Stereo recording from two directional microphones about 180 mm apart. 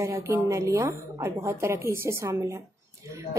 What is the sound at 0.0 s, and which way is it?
A woman's voice, 15° right (ahead or behind).